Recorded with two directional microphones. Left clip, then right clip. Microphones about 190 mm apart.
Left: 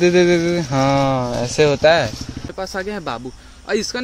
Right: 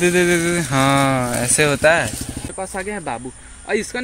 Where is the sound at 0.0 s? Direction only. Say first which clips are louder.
Left 2 dB; 10° left (ahead or behind).